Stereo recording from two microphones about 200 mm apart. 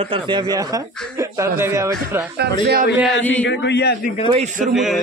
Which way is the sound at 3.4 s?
60° left (ahead or behind).